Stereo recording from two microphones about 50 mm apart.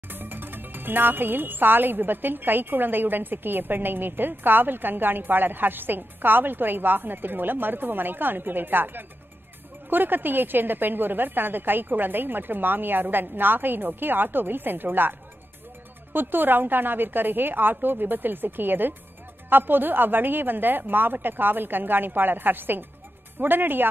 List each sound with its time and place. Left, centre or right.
0.1 s a woman's voice: right